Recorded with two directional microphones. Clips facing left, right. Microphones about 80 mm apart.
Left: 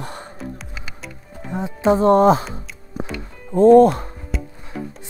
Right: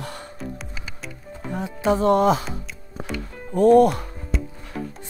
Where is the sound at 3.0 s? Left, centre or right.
Centre.